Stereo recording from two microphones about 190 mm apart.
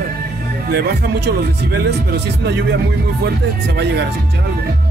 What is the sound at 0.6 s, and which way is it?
Speech, 55° right (ahead or behind).